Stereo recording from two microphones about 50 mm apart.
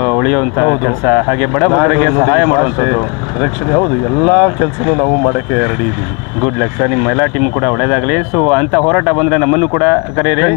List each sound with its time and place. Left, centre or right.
0.1 s speech: centre